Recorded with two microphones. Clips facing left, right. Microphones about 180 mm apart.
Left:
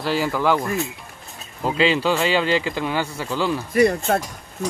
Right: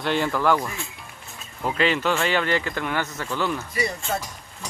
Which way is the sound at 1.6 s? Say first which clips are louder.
Left 3 dB; 25° left (ahead or behind).